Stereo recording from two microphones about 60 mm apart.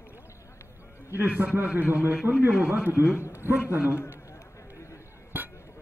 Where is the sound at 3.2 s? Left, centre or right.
Left.